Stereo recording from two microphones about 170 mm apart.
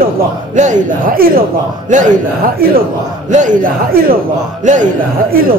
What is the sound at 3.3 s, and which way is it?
Speech, 50° right (ahead or behind).